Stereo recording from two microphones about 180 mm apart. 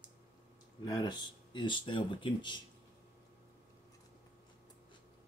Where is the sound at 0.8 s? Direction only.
25° left (ahead or behind).